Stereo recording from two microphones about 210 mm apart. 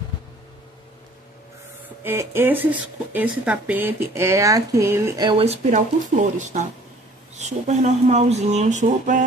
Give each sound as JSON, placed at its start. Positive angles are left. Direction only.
{"t": 2.0, "sound": "speech", "side_deg": -10}